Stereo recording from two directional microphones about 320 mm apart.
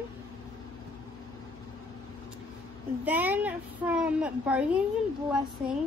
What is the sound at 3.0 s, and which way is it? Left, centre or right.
Child singing, centre.